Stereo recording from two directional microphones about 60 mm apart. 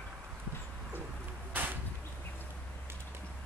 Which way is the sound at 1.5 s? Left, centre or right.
Right.